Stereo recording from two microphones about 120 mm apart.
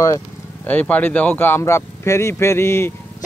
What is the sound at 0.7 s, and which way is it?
Speech, 15° left (ahead or behind).